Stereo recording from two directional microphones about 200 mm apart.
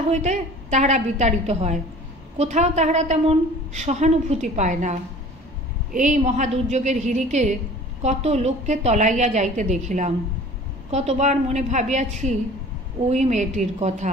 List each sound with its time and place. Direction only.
0.1 s a woman's voice: 35° right (ahead or behind)
5.9 s a woman's voice: 35° right (ahead or behind)